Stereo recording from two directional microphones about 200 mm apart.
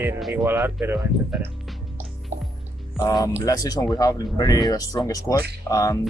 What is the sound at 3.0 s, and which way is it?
Speech, 20° left (ahead or behind).